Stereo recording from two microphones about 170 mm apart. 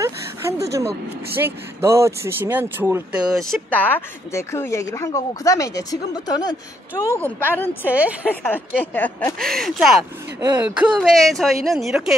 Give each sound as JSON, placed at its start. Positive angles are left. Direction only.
{"t": 0.7, "sound": "speech", "side_deg": -15}
{"t": 3.3, "sound": "speech", "side_deg": 0}
{"t": 7.8, "sound": "speech", "side_deg": -10}
{"t": 8.5, "sound": "a woman's voice", "side_deg": 10}